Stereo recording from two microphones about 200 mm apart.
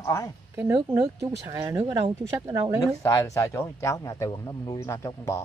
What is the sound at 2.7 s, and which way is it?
Speech, 20° left (ahead or behind).